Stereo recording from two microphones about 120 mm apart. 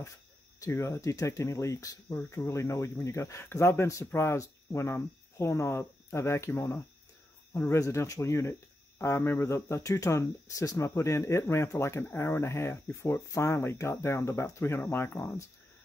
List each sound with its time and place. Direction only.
0.6 s speech: 25° left (ahead or behind)
7.7 s speech: 25° left (ahead or behind)